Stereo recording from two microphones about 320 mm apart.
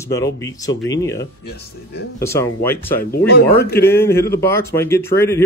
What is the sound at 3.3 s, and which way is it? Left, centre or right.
Speech, left.